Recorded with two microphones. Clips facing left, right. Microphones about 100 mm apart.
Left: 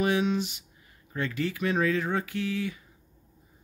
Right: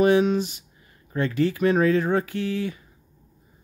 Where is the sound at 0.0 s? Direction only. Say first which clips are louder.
Right 7 dB; 40° right (ahead or behind).